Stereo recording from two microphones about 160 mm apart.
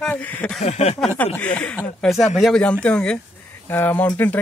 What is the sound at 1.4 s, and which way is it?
A man's voice, 10° left (ahead or behind).